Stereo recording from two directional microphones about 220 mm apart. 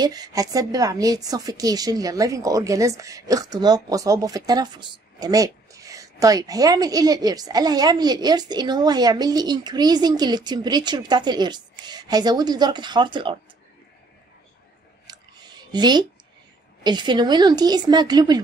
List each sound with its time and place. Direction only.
0.0 s a woman's voice: 15° right (ahead or behind)
15.0 s a sound: 20° right (ahead or behind)
16.8 s a woman's voice: 20° right (ahead or behind)